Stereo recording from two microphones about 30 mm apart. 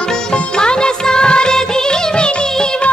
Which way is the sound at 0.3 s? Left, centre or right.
Left.